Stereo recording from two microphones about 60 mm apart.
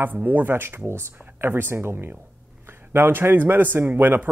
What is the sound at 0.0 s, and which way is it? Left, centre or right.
Speech, right.